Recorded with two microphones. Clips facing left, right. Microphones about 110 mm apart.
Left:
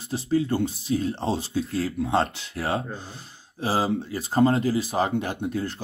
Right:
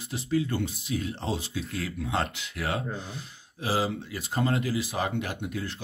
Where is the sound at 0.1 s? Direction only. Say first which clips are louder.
Left 4 dB; 30° left (ahead or behind).